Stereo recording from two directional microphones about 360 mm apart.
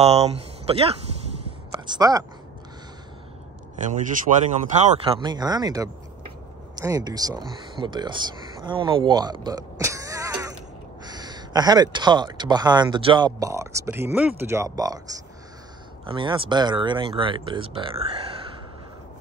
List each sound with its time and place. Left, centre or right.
0.0 s speech: centre
2.0 s speech: centre
4.3 s speech: centre
16.1 s speech: centre